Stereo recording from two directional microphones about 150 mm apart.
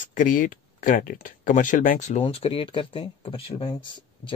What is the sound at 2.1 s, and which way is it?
Speech, 40° left (ahead or behind).